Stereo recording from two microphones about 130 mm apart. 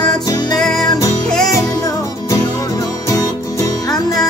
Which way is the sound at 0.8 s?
30° left (ahead or behind).